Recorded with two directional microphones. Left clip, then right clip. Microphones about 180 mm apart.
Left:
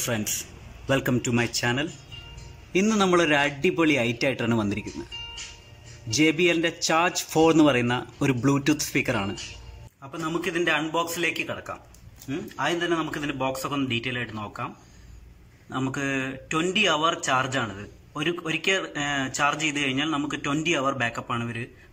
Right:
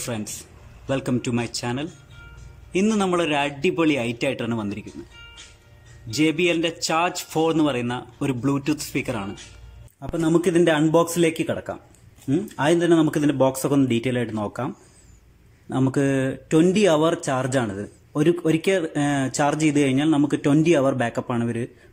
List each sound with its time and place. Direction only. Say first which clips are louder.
0.8 s a man's voice: even; 5° right (ahead or behind)
6.0 s a man's voice: right 1 dB; 5° right (ahead or behind)
10.1 s speech: right 8 dB; 35° right (ahead or behind)
15.7 s speech: right 6 dB; 30° right (ahead or behind)